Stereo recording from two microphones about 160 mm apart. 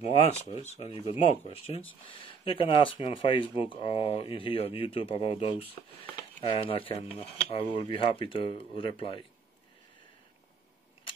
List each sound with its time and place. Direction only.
0.0 s speech: 45° left (ahead or behind)